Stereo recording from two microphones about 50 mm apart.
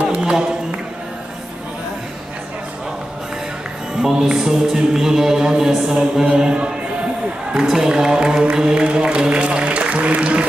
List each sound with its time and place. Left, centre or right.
0.1 s a sound: centre
4.0 s speech: centre
7.5 s music: centre